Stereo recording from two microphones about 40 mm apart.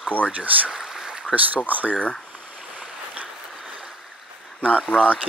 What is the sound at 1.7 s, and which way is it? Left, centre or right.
Speech, right.